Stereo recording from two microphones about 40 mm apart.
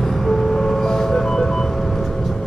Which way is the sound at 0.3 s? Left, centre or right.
Centre.